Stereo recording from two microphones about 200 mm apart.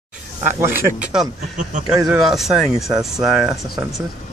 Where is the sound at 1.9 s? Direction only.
Centre (ahead or behind).